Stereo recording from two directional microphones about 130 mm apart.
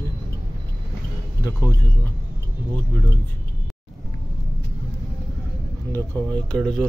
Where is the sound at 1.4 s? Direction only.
25° left (ahead or behind).